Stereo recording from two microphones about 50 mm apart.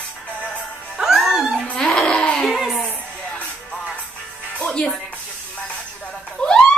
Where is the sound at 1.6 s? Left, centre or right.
Centre.